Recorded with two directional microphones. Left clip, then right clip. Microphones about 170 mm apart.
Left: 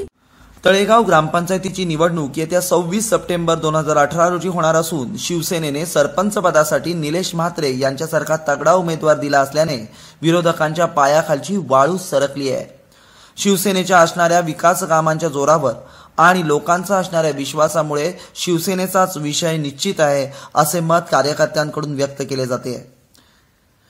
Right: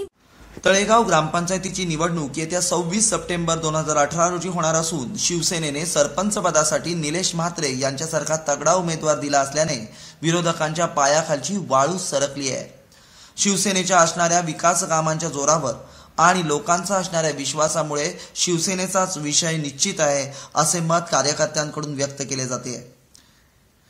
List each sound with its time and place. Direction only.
0.7 s a man's voice: 35° left (ahead or behind)